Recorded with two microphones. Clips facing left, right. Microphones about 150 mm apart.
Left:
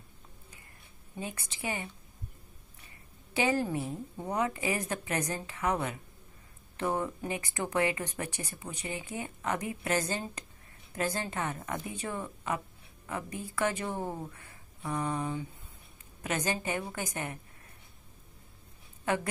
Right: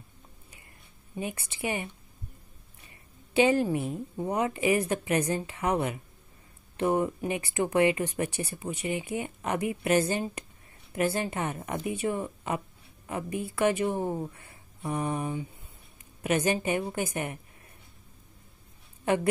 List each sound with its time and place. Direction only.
1.2 s a woman's voice: 15° right (ahead or behind)
3.3 s a woman's voice: 15° right (ahead or behind)